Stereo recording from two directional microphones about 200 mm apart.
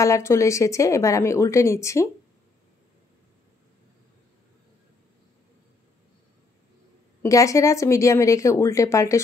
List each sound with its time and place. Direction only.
0.0 s a woman's voice: 15° left (ahead or behind)
7.2 s a woman's voice: 15° left (ahead or behind)